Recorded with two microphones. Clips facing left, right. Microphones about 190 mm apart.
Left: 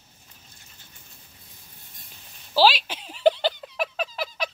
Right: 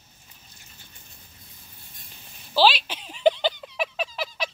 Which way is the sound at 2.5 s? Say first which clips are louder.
Left 1 dB; 5° left (ahead or behind).